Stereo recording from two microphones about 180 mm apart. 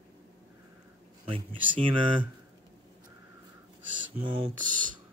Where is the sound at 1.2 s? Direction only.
30° right (ahead or behind).